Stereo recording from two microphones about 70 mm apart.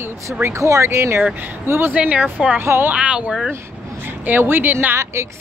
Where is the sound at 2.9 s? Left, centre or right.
Centre.